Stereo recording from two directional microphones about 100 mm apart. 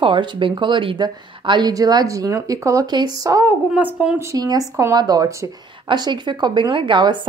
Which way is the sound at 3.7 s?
10° right (ahead or behind).